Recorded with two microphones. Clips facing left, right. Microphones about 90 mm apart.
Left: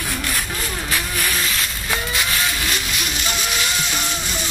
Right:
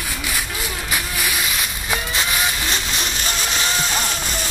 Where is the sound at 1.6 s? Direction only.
15° right (ahead or behind).